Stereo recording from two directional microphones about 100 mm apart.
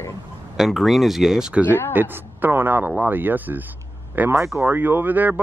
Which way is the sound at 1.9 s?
20° right (ahead or behind).